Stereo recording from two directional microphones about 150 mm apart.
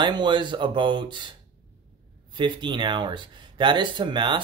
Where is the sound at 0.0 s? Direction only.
30° right (ahead or behind).